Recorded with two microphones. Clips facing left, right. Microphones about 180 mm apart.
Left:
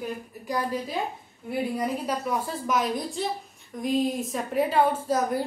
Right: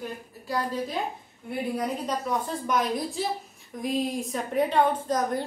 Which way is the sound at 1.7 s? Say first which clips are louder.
Left 1 dB; 5° left (ahead or behind).